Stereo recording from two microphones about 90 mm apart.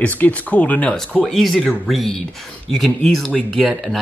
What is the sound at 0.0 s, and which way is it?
Speech, 15° left (ahead or behind).